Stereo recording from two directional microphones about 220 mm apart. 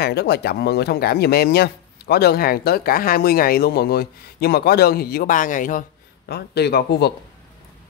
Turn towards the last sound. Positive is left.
turn(degrees=50)  # may be behind; listen again after turning